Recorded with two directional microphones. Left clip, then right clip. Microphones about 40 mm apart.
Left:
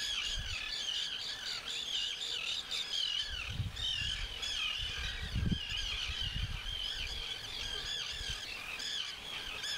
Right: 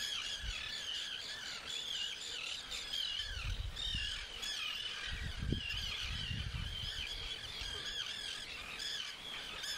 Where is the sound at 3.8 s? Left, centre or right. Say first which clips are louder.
Left 4 dB; right.